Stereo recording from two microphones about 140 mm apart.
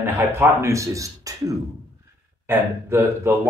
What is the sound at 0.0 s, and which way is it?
Speech, 20° right (ahead or behind).